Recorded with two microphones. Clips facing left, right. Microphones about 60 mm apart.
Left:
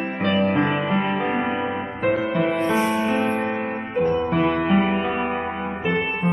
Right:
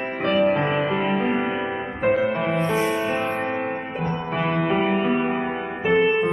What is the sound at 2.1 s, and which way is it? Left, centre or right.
Music, right.